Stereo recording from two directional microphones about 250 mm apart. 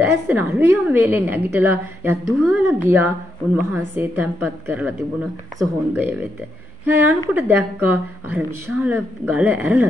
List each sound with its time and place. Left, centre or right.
0.0 s a woman's voice: centre